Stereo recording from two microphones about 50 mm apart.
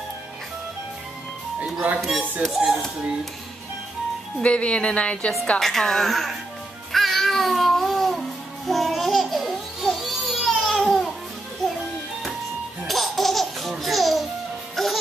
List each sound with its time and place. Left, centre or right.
1.6 s music: right
2.4 s a woman's voice: centre
4.4 s speech: left
5.6 s a woman's voice: centre
6.9 s music: centre
10.5 s babbling: centre
12.8 s laughter: centre
14.8 s music: centre